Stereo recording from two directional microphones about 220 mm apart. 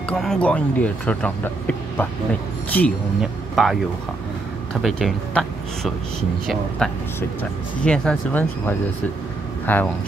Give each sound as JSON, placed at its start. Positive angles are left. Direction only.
{"t": 0.1, "sound": "speech", "side_deg": 5}
{"t": 4.8, "sound": "speech", "side_deg": 0}